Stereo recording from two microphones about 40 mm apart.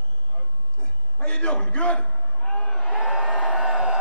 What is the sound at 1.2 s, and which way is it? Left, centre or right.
Crowd, left.